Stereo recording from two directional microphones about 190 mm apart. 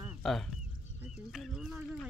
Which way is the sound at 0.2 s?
Centre (ahead or behind).